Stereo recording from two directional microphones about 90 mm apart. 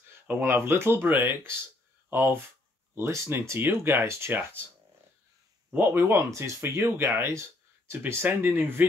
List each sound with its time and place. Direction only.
0.3 s speech: 25° right (ahead or behind)
5.7 s speech: 25° right (ahead or behind)